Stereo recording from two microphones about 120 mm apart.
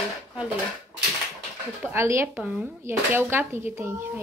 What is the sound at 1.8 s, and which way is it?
Speech, 20° right (ahead or behind).